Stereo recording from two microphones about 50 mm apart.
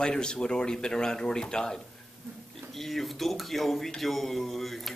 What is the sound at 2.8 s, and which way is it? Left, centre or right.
Speech, centre.